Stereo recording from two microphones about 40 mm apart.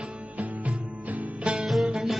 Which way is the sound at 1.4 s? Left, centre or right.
Right.